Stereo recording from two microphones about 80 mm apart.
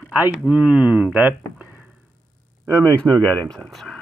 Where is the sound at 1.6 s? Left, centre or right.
Centre.